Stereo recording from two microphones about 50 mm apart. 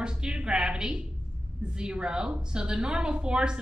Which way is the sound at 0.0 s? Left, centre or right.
Centre.